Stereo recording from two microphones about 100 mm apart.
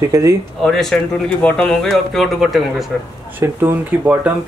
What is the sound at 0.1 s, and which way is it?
Speech, 30° right (ahead or behind).